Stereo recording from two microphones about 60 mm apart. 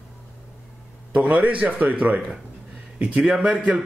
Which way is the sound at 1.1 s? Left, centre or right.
Right.